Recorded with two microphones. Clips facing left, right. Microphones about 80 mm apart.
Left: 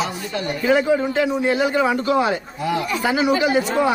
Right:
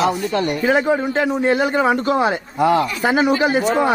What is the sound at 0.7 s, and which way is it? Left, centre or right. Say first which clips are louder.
A man's voice: left 2 dB; right.